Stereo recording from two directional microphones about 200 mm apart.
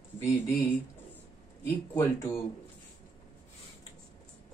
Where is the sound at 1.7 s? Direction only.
10° left (ahead or behind).